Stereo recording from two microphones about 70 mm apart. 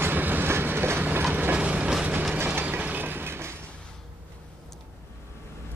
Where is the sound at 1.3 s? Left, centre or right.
Right.